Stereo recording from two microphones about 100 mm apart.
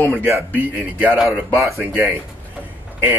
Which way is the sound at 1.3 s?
25° right (ahead or behind).